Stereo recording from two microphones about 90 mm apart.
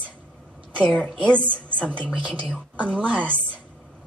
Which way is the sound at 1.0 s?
10° left (ahead or behind).